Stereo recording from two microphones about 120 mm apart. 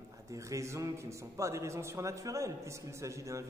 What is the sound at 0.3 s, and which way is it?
A man's voice, 25° right (ahead or behind).